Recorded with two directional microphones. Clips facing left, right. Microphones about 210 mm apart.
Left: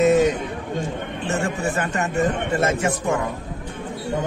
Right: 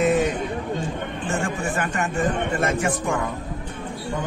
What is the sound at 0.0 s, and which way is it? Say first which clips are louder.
Chatter: left 4 dB; 25° left (ahead or behind).